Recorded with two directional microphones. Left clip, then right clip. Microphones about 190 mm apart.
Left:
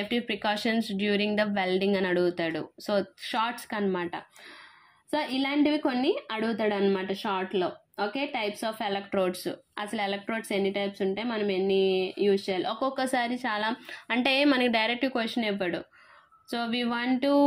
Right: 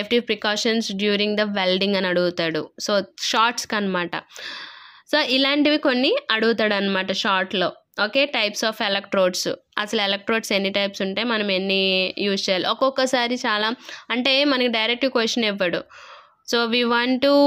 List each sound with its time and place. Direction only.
0.0 s a woman's voice: 30° right (ahead or behind)